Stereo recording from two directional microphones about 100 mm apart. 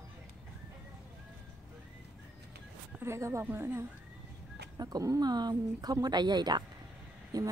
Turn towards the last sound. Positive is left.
turn(degrees=-40)  # may be behind; listen again after turning